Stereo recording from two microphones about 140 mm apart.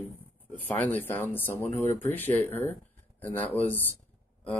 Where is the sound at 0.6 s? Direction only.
15° left (ahead or behind).